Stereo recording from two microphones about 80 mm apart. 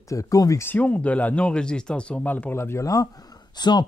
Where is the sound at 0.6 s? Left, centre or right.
Left.